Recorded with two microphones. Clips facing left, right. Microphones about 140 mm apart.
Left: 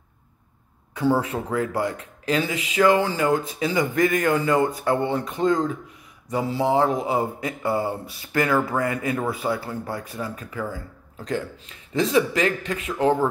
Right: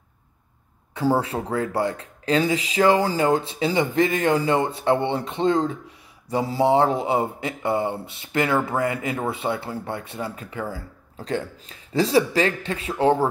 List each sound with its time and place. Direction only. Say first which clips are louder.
0.9 s speech: even; 35° right (ahead or behind)